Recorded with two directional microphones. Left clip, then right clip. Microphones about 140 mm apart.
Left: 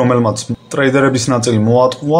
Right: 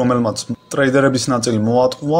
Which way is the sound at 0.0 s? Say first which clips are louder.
Left 4 dB; 25° right (ahead or behind).